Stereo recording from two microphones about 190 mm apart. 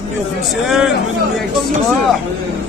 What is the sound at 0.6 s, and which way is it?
Speech, centre (ahead or behind).